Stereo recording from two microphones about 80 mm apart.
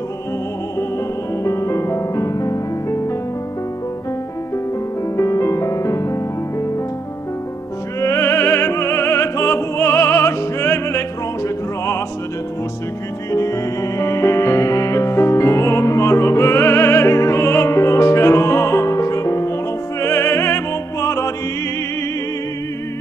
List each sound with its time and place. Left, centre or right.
1.4 s music: left
5.1 s music: left
8.0 s opera: left
13.3 s music: left
20.0 s opera: left